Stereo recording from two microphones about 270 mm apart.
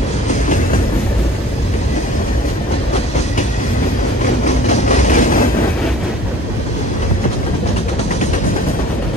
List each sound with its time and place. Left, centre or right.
4.6 s train: left